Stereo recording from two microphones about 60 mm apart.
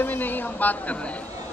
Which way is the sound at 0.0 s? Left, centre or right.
Left.